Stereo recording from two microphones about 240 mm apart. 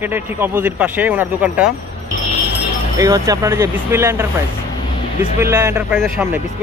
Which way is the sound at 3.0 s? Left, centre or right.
Centre.